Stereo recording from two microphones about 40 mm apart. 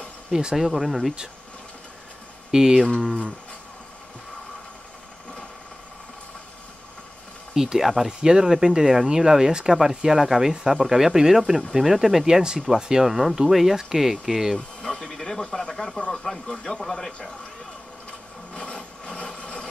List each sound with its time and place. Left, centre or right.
0.3 s speech: centre
2.5 s speech: centre
7.5 s speech: centre
14.8 s a sound: centre
15.7 s speech: centre
16.0 s speech: centre
16.8 s speech: centre
18.5 s wood: left